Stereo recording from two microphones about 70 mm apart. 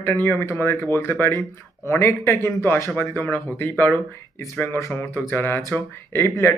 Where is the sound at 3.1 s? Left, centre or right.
Left.